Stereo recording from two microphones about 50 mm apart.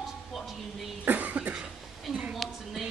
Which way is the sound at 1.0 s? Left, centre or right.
Right.